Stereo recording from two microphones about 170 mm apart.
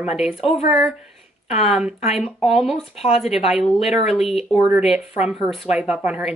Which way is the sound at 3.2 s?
Centre (ahead or behind).